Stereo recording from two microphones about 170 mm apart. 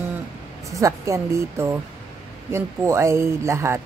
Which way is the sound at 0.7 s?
20° right (ahead or behind).